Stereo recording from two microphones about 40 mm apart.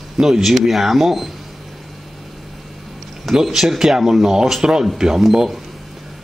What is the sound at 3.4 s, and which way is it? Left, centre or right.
Speech, centre.